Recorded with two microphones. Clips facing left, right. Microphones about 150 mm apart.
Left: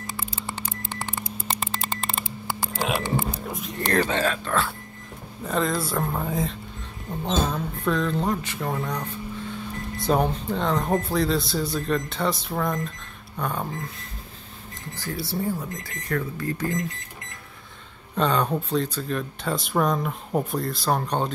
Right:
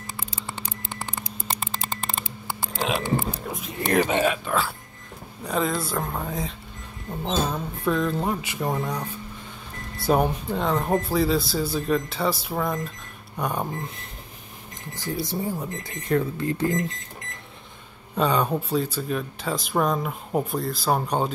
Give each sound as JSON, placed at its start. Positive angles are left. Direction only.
{"t": 2.7, "sound": "speech", "side_deg": 0}
{"t": 5.4, "sound": "speech", "side_deg": 0}
{"t": 13.4, "sound": "speech", "side_deg": -15}
{"t": 18.1, "sound": "speech", "side_deg": -5}